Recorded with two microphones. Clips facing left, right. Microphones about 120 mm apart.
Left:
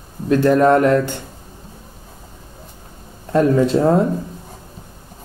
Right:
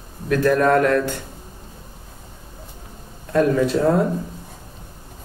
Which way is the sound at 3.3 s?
25° left (ahead or behind).